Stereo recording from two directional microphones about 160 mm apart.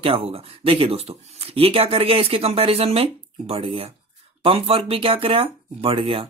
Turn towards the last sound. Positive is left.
turn(degrees=-35)  # may be behind; listen again after turning